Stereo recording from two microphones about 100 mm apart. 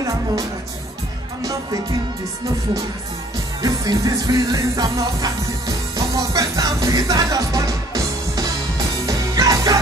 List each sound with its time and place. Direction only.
1.4 s music: 35° right (ahead or behind)
3.6 s music: 35° right (ahead or behind)